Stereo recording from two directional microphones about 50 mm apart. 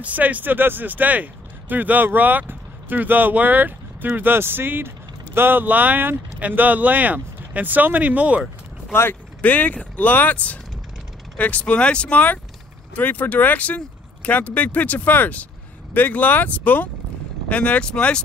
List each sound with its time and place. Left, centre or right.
0.0 s speech: right
9.4 s speech: left; by 18.2 s centre